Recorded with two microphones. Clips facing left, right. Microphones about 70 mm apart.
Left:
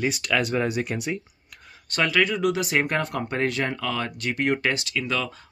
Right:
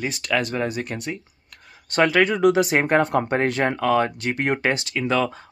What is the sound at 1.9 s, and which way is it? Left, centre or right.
Speech, right.